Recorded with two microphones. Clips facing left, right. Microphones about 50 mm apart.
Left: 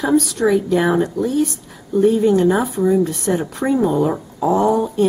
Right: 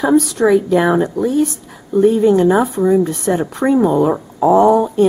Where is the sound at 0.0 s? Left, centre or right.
Centre.